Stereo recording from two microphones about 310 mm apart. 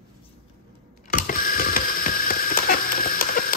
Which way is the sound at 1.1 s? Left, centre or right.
Left.